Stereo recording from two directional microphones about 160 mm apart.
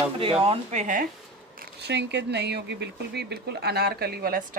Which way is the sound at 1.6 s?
90° right.